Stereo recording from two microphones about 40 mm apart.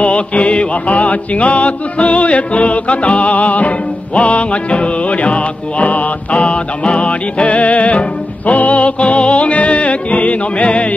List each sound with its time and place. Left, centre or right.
0.0 s music: left